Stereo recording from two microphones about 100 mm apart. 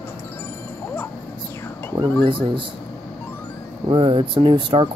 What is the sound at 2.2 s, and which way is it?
Speech, 55° right (ahead or behind).